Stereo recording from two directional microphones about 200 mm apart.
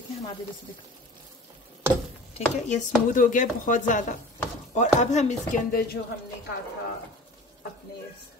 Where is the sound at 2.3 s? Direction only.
35° left (ahead or behind).